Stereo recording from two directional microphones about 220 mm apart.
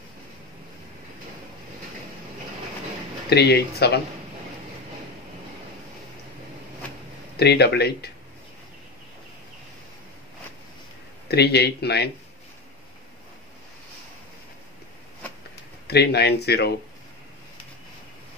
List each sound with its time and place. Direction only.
3.3 s speech: 50° left (ahead or behind)
7.3 s speech: 45° left (ahead or behind)
11.2 s speech: 45° left (ahead or behind)
15.9 s speech: 45° left (ahead or behind)